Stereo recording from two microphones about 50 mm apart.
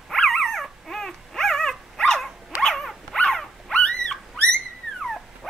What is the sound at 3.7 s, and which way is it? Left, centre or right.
Owl, centre.